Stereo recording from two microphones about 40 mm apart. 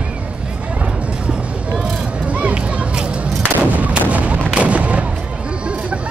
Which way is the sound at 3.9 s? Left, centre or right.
Right.